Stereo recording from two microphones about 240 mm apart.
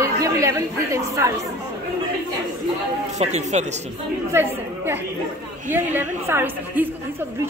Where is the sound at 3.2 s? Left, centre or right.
Right.